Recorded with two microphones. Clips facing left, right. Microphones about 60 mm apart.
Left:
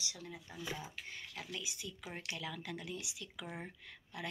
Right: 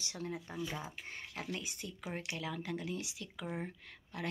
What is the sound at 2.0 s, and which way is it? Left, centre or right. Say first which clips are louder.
Speech: right 4 dB; centre.